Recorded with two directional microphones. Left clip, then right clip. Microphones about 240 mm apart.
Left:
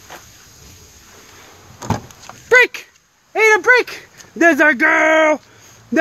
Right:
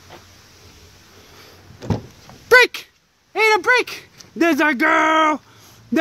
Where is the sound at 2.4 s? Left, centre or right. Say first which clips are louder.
Left 1 dB; right.